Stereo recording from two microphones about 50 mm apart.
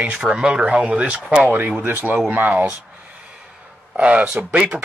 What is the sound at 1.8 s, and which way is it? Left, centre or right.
Speech, right.